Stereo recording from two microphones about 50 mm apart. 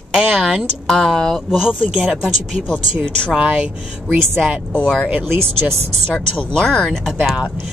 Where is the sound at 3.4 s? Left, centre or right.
Right.